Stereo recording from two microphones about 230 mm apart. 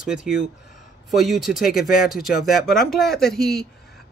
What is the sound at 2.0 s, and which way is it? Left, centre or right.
Speech, centre.